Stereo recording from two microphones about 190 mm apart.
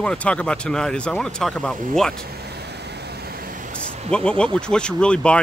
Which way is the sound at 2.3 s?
60° right (ahead or behind).